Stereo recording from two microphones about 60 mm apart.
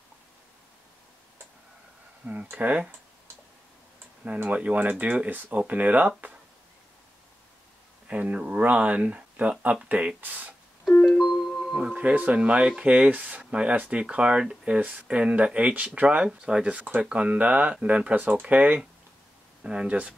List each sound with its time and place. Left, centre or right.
2.2 s speech: right
4.2 s speech: right
8.1 s speech: right
10.9 s music: centre
11.1 s music: centre
11.9 s speech: right
14.8 s speech: right
16.3 s speech: centre